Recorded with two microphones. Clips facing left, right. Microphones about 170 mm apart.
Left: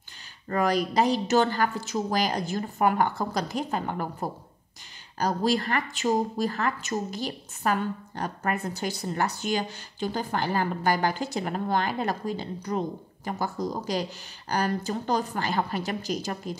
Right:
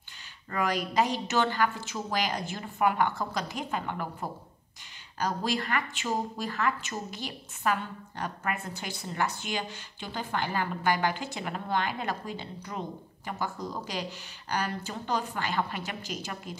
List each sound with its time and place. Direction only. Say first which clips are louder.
0.5 s a woman's voice: left 5 dB; 40° left (ahead or behind)